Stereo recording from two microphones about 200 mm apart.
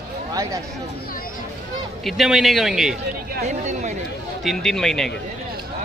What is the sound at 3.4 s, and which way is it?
Speech, 35° right (ahead or behind).